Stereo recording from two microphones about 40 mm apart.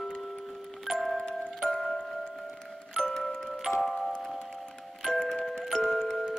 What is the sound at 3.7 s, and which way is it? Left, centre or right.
Music, centre.